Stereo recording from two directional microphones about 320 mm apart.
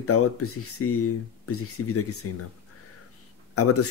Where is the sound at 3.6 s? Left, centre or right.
Left.